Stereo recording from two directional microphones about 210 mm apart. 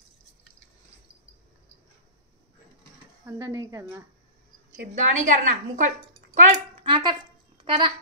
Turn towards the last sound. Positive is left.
turn(degrees=-20)  # may be behind; listen again after turning